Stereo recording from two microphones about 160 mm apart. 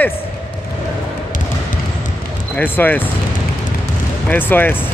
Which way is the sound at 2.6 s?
10° left (ahead or behind).